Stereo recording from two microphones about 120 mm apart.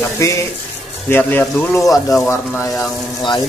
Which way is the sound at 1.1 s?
15° left (ahead or behind).